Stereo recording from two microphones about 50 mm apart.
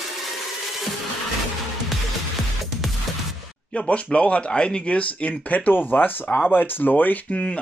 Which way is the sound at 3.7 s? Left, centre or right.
Left.